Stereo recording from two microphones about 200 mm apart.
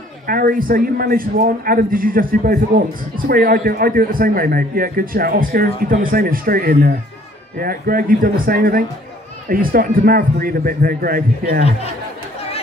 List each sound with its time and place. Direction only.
0.3 s a man's voice: 45° right (ahead or behind)